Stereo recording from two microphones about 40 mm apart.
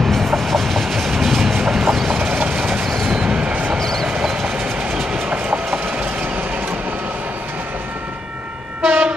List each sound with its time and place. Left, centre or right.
0.4 s train: centre
2.8 s train: centre
3.1 s vehicle: right
3.7 s vehicle: centre
4.2 s train: centre
8.8 s train: right